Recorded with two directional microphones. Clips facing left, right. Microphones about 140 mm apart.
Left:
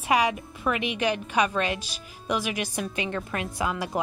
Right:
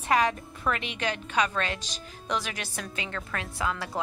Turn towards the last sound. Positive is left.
turn(degrees=15)  # may be behind; listen again after turning